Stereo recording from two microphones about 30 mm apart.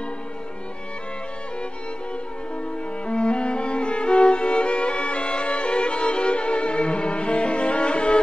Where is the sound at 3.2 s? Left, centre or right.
Left.